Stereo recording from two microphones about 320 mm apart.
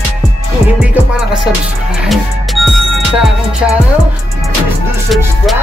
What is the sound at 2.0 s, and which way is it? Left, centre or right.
Music, centre.